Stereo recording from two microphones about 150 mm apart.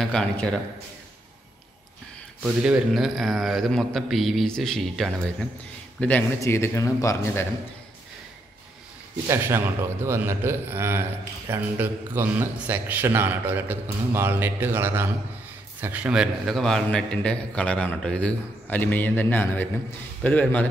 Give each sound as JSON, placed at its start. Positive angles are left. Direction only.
{"t": 0.0, "sound": "a man's voice", "side_deg": 5}
{"t": 2.4, "sound": "a man's voice", "side_deg": -5}
{"t": 9.3, "sound": "a man's voice", "side_deg": -15}